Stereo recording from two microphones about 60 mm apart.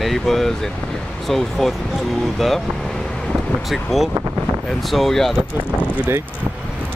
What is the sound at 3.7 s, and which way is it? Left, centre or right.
Speech, centre.